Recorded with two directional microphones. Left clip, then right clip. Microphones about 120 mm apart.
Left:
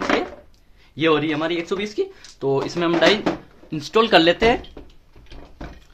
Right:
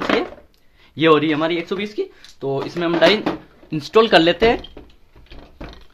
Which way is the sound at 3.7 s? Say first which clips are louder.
Right 2 dB; 20° right (ahead or behind).